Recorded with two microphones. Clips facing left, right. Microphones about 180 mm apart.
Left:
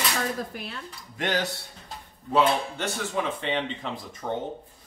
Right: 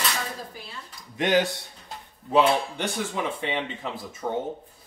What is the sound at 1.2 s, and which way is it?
Speech, 15° right (ahead or behind).